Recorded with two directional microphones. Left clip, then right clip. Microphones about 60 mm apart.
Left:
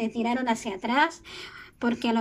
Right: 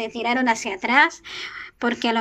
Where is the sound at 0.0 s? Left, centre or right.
Centre.